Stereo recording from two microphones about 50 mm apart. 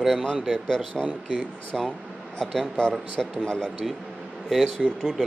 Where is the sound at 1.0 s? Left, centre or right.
Centre.